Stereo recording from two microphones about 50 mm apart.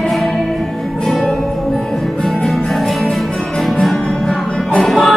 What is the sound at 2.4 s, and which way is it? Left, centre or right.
Music, centre.